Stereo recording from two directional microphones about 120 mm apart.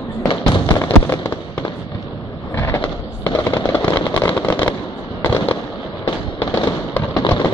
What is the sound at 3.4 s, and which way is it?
Fireworks, 15° left (ahead or behind).